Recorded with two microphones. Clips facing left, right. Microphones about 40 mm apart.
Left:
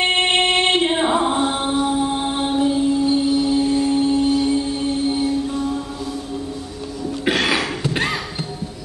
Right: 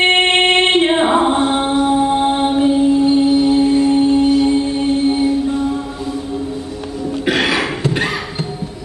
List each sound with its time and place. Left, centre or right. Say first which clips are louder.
0.0 s music: right 5 dB; right